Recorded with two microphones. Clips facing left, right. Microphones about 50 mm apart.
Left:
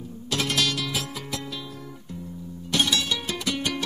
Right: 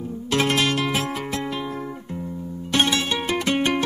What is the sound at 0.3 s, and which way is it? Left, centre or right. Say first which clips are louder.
Music: right 5 dB; right.